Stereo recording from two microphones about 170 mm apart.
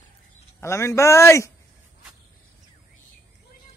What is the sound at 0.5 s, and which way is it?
Speech, 15° left (ahead or behind).